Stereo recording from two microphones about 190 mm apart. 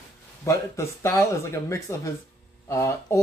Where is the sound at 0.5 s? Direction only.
15° left (ahead or behind).